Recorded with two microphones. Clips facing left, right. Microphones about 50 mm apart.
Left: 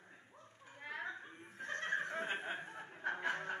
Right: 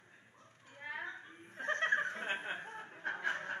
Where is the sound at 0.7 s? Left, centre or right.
Centre.